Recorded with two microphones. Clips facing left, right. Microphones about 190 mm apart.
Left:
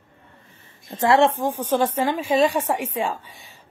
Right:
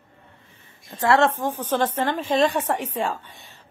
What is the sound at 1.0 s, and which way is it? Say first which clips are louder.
A woman's voice: left 2 dB; 15° left (ahead or behind).